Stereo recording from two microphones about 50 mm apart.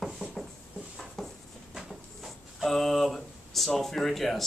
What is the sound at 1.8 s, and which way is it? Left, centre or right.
Speech, centre.